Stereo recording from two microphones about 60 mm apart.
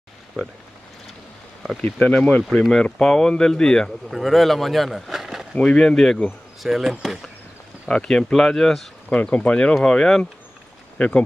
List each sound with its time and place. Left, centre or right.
0.3 s speech: centre
1.8 s speech: left
2.7 s speech: centre
4.1 s speech: centre
5.6 s speech: centre
6.6 s speech: centre
7.9 s speech: centre
9.1 s speech: left